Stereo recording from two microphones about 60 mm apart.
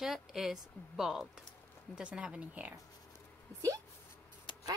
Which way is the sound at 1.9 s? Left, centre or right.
Centre.